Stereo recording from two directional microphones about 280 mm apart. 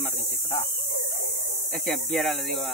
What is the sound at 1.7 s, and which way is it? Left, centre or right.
Speech, centre.